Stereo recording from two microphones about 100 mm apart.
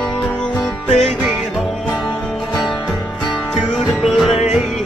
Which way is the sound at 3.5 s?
Centre (ahead or behind).